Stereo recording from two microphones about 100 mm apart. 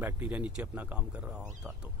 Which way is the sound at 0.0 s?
15° right (ahead or behind).